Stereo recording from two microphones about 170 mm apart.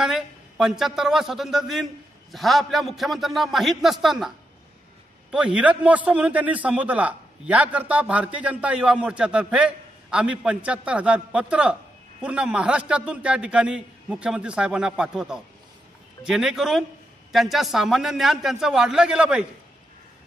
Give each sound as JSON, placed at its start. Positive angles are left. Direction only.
{"t": 0.0, "sound": "a man's voice", "side_deg": -5}
{"t": 5.3, "sound": "a man's voice", "side_deg": -5}